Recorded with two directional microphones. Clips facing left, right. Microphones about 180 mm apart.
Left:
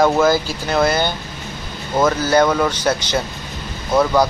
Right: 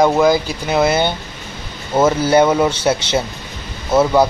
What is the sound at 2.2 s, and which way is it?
Speech, 25° right (ahead or behind).